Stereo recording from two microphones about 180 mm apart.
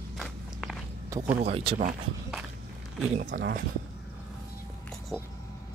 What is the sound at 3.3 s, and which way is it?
Speech, 70° right (ahead or behind).